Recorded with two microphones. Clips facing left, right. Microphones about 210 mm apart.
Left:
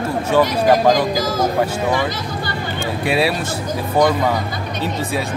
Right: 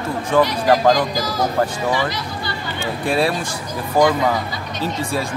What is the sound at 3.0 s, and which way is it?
Speech, 5° left (ahead or behind).